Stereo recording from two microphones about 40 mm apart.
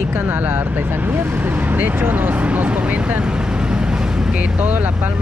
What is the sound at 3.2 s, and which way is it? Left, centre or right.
Vehicle, right.